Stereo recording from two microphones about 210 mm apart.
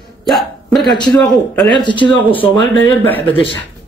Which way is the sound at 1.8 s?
25° left (ahead or behind).